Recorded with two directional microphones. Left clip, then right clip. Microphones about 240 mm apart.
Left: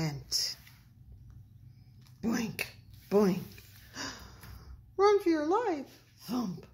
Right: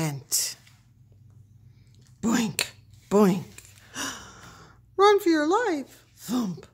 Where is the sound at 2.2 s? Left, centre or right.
Right.